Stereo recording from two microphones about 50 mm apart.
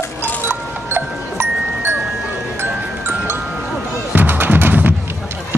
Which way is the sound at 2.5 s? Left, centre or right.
Right.